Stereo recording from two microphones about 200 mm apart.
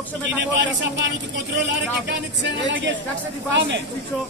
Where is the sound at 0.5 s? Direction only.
65° right (ahead or behind).